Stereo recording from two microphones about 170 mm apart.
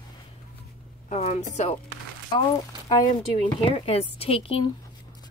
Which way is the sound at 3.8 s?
35° left (ahead or behind).